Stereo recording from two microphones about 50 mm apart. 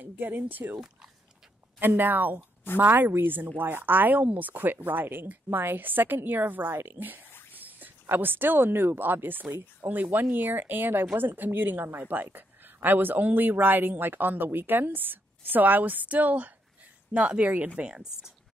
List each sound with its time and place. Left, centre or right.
0.0 s a woman's voice: right
1.8 s a woman's voice: right
7.0 s a woman's voice: right
17.8 s speech: centre